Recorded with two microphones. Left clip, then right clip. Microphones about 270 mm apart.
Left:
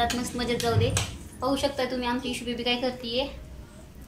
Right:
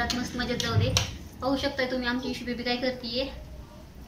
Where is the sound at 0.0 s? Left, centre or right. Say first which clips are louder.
Left 3 dB; centre.